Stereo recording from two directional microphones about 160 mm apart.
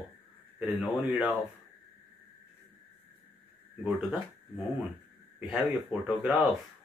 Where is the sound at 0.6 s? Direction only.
5° right (ahead or behind).